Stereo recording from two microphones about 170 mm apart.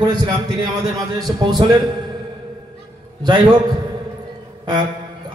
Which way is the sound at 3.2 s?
25° right (ahead or behind).